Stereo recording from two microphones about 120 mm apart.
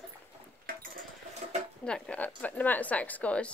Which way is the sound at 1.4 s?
60° right (ahead or behind).